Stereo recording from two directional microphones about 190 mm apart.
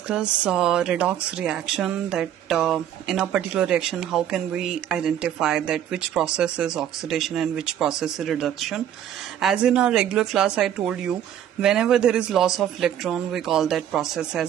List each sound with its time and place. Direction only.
0.1 s speech: 5° right (ahead or behind)